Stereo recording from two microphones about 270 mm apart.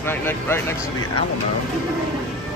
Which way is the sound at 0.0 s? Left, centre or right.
Centre.